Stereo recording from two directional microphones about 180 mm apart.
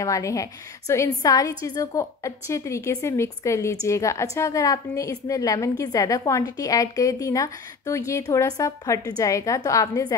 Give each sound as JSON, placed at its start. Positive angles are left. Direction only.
{"t": 0.0, "sound": "a woman's voice", "side_deg": 20}